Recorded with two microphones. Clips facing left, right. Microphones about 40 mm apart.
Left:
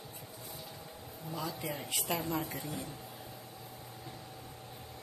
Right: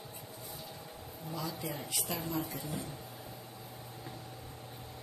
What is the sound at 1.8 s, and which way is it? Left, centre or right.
Speech, left.